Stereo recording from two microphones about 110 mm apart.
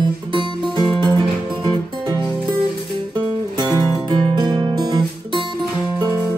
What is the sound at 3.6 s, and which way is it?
Music, 35° right (ahead or behind).